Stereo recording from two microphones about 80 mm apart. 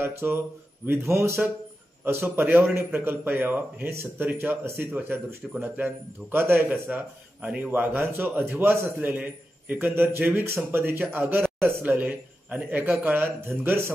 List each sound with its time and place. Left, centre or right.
0.0 s a man's voice: right